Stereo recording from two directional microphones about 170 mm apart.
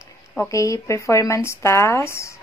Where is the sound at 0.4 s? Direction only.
20° left (ahead or behind).